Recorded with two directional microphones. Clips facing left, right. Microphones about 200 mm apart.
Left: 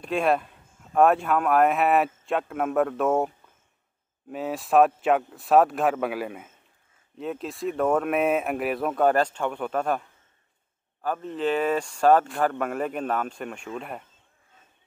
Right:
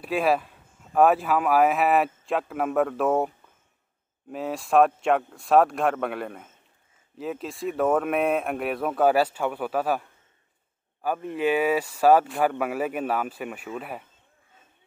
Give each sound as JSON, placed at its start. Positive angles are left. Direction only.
{"t": 0.0, "sound": "speech", "side_deg": -5}
{"t": 4.3, "sound": "speech", "side_deg": 0}